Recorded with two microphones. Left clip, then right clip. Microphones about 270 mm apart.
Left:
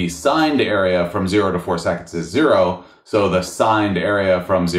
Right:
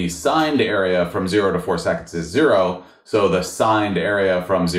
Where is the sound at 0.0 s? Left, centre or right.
Left.